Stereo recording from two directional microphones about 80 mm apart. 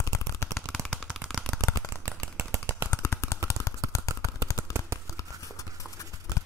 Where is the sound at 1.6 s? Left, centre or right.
Right.